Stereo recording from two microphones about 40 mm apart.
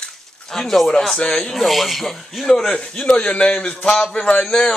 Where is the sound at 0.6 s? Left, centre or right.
Centre.